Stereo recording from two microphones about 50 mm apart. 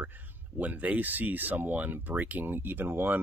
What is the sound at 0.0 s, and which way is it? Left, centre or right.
Speech, right.